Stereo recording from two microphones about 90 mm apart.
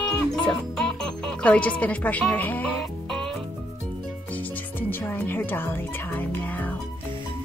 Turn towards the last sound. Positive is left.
turn(degrees=20)  # may be behind; listen again after turning